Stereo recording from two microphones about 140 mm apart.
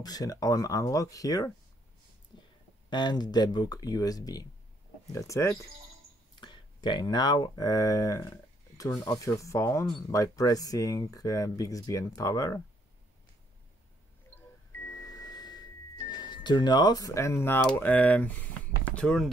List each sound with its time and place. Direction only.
0.0 s speech: 25° left (ahead or behind)
2.3 s a sound: 35° left (ahead or behind)
2.9 s speech: 30° left (ahead or behind)
6.4 s speech: 35° left (ahead or behind)
14.3 s a sound: 20° left (ahead or behind)
16.1 s speech: 30° left (ahead or behind); by 19.3 s 5° left (ahead or behind)